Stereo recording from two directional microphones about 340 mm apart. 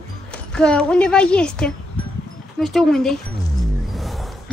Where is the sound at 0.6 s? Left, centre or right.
Centre.